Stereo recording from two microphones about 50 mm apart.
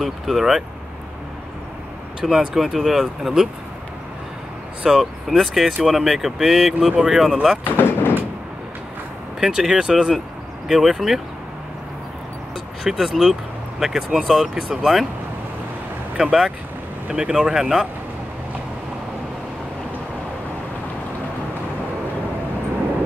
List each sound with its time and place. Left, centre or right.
0.0 s speech: centre
2.2 s speech: centre
4.8 s speech: centre
7.6 s vehicle: left
9.4 s speech: centre
12.8 s speech: centre
16.2 s speech: centre